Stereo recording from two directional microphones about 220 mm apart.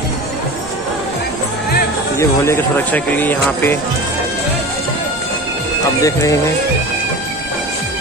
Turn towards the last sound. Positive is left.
turn(degrees=15)  # may be behind; listen again after turning